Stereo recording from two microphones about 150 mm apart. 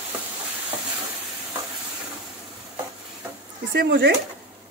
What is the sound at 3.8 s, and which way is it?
Speech, 90° right.